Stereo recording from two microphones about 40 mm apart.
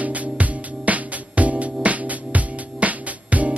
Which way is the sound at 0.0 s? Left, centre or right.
Right.